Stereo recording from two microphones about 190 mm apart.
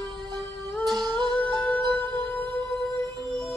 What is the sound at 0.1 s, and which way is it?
Music, 20° right (ahead or behind).